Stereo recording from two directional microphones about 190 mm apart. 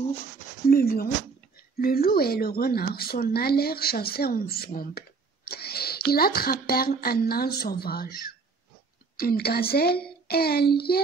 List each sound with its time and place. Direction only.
0.7 s speech: 50° left (ahead or behind)